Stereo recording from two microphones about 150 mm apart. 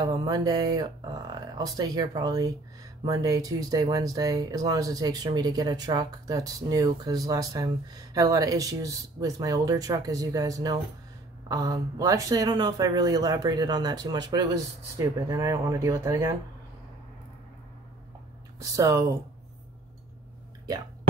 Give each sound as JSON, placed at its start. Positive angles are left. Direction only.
{"t": 0.0, "sound": "speech", "side_deg": -30}
{"t": 18.6, "sound": "speech", "side_deg": -20}